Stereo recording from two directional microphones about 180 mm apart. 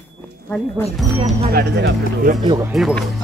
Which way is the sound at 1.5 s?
65° right (ahead or behind).